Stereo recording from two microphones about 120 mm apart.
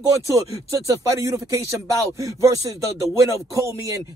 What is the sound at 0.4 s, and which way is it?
Speech, 25° right (ahead or behind).